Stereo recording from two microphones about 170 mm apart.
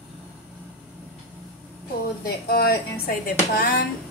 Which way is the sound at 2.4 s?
65° left (ahead or behind).